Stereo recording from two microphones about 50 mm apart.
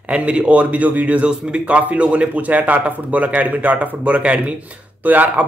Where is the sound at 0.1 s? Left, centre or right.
Right.